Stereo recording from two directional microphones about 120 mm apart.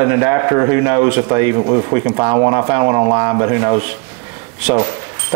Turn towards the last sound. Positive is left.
turn(degrees=-20)  # may be behind; listen again after turning